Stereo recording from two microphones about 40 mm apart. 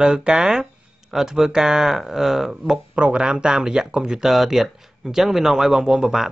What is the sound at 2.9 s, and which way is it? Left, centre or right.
Speech, right.